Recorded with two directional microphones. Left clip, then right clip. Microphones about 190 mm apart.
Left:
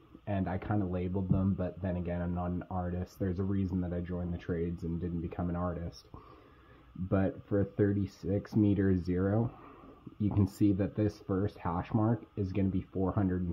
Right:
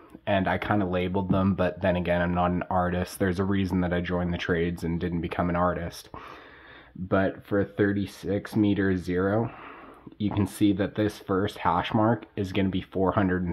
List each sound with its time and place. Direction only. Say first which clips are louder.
0.2 s speech: right 12 dB; 10° right (ahead or behind)
7.1 s speech: right 7 dB; centre (ahead or behind)